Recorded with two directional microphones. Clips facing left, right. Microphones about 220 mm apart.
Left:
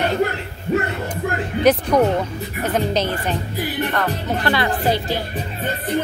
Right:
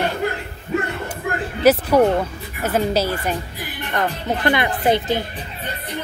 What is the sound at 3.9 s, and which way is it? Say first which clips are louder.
A woman's voice: even; 20° right (ahead or behind).